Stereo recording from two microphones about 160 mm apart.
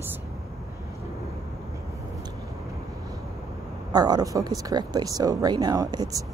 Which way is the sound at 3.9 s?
25° right (ahead or behind).